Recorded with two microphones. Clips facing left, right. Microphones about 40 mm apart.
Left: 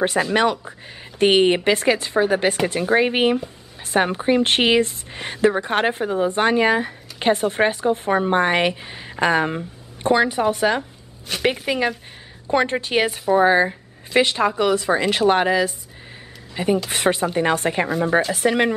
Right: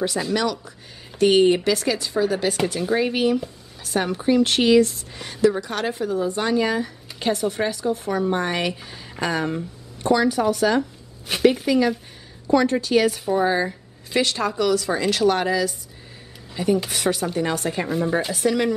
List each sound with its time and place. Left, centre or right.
0.0 s a woman's voice: left
11.3 s a sound: centre
11.6 s a woman's voice: left